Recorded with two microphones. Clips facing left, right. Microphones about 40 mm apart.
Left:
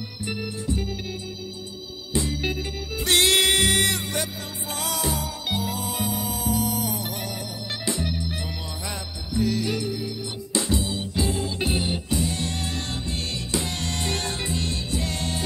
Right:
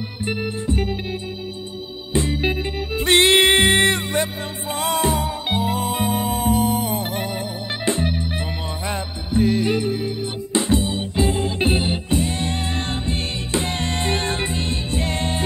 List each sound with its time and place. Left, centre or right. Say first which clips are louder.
0.2 s music: right 6 dB; right
2.1 s music: right 5 dB; right